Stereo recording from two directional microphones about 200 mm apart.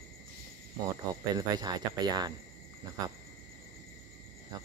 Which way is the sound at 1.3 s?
20° right (ahead or behind).